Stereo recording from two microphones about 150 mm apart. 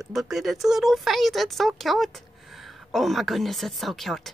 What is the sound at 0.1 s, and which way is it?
A woman's voice, centre (ahead or behind).